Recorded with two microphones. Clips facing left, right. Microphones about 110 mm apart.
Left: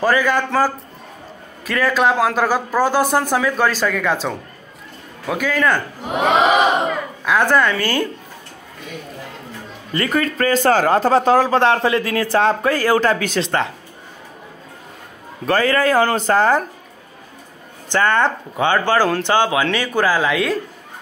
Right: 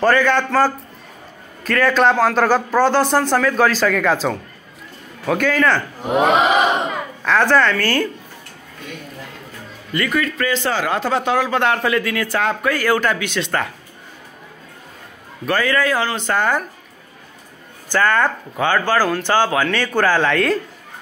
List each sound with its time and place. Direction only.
0.0 s a man's voice: 10° left (ahead or behind)
7.2 s speech: 10° left (ahead or behind)
9.9 s speech: 35° left (ahead or behind)
15.4 s speech: 35° left (ahead or behind)
17.9 s speech: 20° left (ahead or behind); by 20.5 s 5° left (ahead or behind)